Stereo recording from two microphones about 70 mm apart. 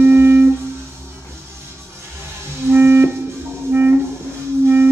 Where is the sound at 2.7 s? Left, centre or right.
Right.